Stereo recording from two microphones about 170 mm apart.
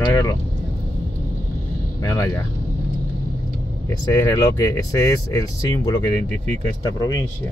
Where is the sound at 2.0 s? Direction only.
20° left (ahead or behind).